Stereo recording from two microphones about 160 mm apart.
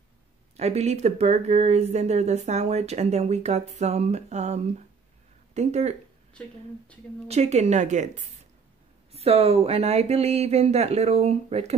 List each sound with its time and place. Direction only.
0.6 s speech: 45° right (ahead or behind)
7.2 s speech: 45° right (ahead or behind)
9.1 s speech: 40° right (ahead or behind)